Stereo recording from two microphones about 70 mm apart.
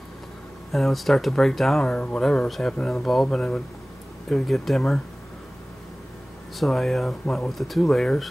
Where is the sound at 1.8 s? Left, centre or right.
Centre.